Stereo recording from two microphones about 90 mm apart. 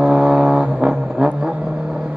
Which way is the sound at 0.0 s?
10° right (ahead or behind).